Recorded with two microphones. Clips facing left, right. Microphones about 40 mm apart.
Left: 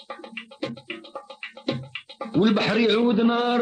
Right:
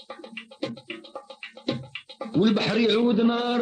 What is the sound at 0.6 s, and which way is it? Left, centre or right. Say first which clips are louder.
Music: left 1 dB; left.